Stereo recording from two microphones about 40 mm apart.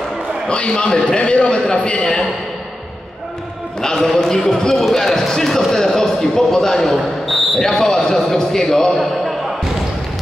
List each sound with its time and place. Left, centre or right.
0.5 s a man's voice: left
3.8 s speech: centre
8.9 s a man's voice: centre